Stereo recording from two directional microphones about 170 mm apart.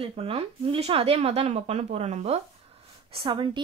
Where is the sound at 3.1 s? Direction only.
30° right (ahead or behind).